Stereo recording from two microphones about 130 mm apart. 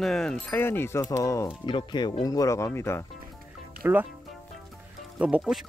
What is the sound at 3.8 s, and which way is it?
Speech, 20° right (ahead or behind).